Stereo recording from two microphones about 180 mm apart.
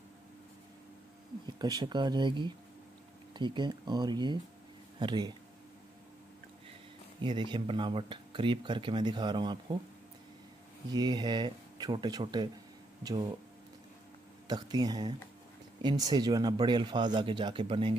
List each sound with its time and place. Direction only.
1.4 s speech: 25° right (ahead or behind)
7.2 s speech: 25° right (ahead or behind)
10.9 s speech: 25° right (ahead or behind)
14.5 s speech: 20° right (ahead or behind)